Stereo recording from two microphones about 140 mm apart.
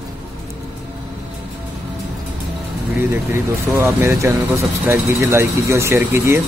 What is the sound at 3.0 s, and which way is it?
Speech, 15° right (ahead or behind).